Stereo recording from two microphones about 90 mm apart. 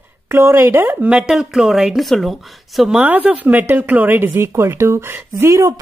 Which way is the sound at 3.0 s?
20° right (ahead or behind).